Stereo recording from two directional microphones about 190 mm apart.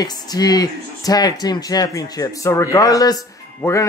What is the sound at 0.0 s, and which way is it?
Speech, 20° left (ahead or behind).